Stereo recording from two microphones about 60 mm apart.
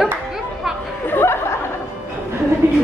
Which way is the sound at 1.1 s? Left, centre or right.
Left.